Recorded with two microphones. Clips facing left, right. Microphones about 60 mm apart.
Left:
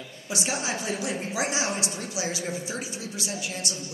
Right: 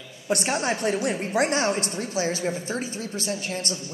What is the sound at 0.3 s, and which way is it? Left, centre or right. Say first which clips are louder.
A woman's voice: right 5 dB; right.